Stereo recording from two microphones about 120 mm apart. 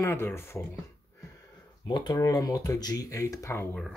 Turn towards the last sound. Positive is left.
turn(degrees=25)  # may be behind; listen again after turning